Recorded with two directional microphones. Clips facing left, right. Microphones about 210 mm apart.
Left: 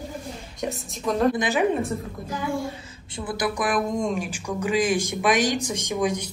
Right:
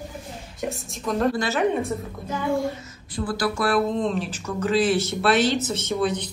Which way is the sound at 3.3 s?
20° left (ahead or behind).